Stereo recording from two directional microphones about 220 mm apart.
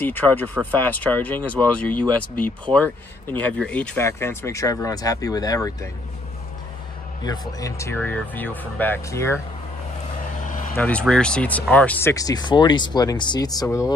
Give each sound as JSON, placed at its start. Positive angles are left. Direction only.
{"t": 0.0, "sound": "speech", "side_deg": 10}
{"t": 7.2, "sound": "speech", "side_deg": 15}
{"t": 10.8, "sound": "speech", "side_deg": 5}